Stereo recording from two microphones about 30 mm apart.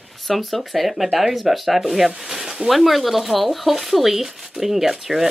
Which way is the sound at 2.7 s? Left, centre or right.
Centre.